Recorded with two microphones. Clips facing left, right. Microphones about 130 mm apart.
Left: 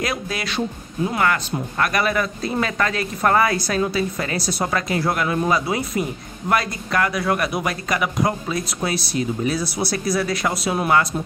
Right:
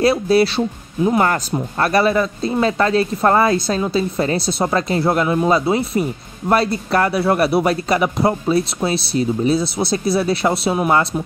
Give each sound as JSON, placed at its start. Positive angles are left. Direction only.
{"t": 0.0, "sound": "speech", "side_deg": -30}